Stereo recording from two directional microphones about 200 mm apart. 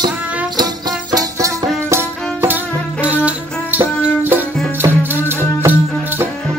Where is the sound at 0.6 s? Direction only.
20° right (ahead or behind).